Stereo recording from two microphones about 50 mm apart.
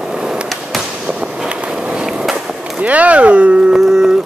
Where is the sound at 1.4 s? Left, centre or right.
Centre.